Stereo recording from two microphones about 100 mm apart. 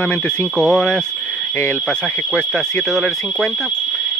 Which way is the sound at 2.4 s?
5° left (ahead or behind).